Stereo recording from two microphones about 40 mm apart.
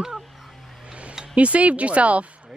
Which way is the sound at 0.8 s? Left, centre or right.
Right.